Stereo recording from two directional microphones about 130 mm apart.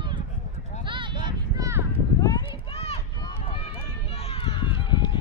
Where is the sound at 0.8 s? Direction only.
40° right (ahead or behind).